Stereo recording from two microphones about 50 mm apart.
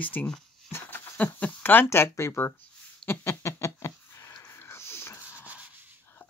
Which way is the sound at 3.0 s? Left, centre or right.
Left.